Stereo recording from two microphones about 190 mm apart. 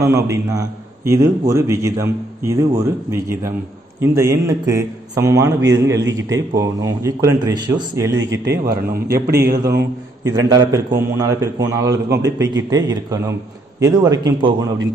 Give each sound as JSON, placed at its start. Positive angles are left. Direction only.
{"t": 0.0, "sound": "a man's voice", "side_deg": -15}
{"t": 8.2, "sound": "speech", "side_deg": -65}
{"t": 10.2, "sound": "a man's voice", "side_deg": -20}